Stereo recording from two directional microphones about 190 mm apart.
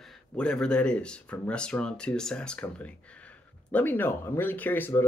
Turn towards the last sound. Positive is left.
turn(degrees=10)  # may be behind; listen again after turning